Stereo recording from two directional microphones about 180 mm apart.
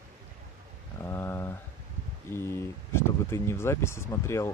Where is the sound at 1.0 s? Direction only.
15° left (ahead or behind).